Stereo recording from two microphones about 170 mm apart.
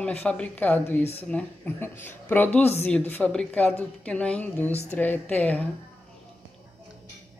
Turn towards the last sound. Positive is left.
turn(degrees=10)  # may be behind; listen again after turning